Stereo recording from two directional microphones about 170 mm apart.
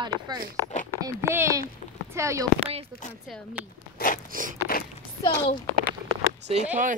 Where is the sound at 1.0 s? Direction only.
15° right (ahead or behind).